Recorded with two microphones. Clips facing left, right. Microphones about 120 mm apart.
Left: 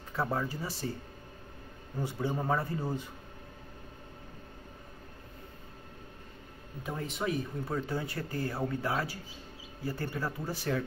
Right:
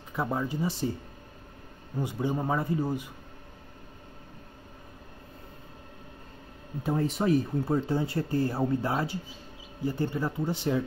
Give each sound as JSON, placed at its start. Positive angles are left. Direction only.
{"t": 0.1, "sound": "a man's voice", "side_deg": -15}
{"t": 2.0, "sound": "a man's voice", "side_deg": -15}
{"t": 6.8, "sound": "speech", "side_deg": -35}